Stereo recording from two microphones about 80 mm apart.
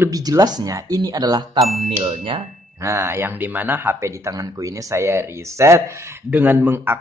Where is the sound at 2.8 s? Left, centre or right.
Right.